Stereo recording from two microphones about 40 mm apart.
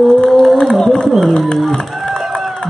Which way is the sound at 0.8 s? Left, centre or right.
Centre.